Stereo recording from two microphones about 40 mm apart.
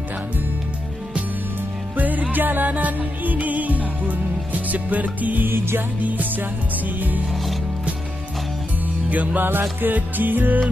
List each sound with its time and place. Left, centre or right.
2.0 s music: right
5.5 s music: right
6.0 s music: right
9.1 s music: right
9.4 s music: right